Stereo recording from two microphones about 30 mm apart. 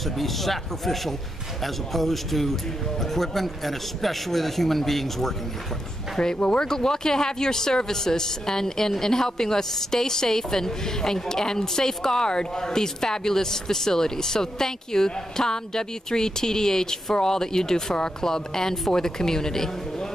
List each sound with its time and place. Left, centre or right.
0.0 s a man's voice: centre
6.3 s speech: left
6.6 s a woman's voice: left